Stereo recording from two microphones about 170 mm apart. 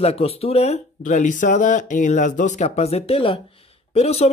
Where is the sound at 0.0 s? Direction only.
35° left (ahead or behind).